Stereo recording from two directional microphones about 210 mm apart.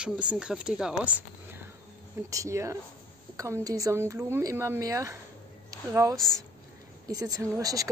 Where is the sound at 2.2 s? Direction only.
15° right (ahead or behind).